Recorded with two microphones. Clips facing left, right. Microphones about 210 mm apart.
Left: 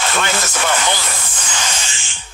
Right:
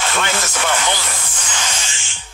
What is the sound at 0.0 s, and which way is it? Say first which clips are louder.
Speech: left 1 dB; 40° left (ahead or behind).